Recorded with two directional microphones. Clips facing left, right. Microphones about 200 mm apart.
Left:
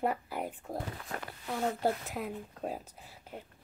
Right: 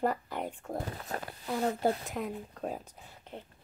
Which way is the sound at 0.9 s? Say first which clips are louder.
Right 3 dB; 40° right (ahead or behind).